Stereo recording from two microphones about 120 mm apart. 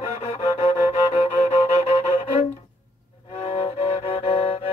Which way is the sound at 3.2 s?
55° left (ahead or behind).